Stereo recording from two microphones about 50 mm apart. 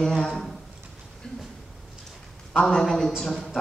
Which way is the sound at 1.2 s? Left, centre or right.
Centre.